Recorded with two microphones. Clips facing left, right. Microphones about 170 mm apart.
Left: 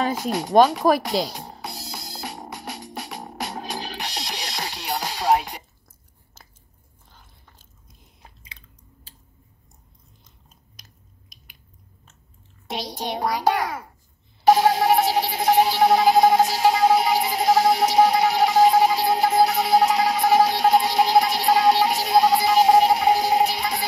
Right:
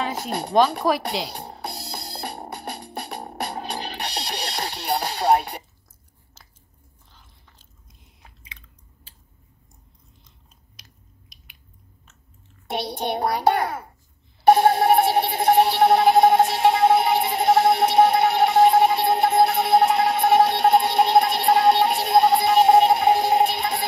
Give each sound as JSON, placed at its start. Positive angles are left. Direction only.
{"t": 0.5, "sound": "speech", "side_deg": 45}
{"t": 1.6, "sound": "music", "side_deg": -65}
{"t": 7.1, "sound": "biting", "side_deg": 50}
{"t": 8.2, "sound": "chewing", "side_deg": 35}
{"t": 10.8, "sound": "squish", "side_deg": 40}
{"t": 12.6, "sound": "a child's voice", "side_deg": -60}
{"t": 14.4, "sound": "telephone bell ringing", "side_deg": -55}